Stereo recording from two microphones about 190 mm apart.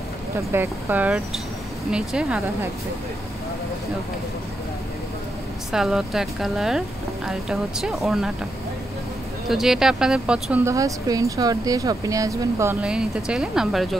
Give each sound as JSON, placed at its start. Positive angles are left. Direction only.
{"t": 0.5, "sound": "speech", "side_deg": -10}
{"t": 5.7, "sound": "speech", "side_deg": -5}
{"t": 9.5, "sound": "speech", "side_deg": 0}
{"t": 12.8, "sound": "speech", "side_deg": -5}